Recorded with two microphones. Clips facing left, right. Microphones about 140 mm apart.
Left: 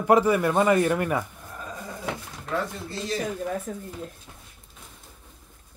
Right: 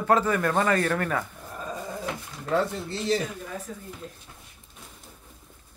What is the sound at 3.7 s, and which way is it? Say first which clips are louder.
Speech: left 5 dB; 50° left (ahead or behind).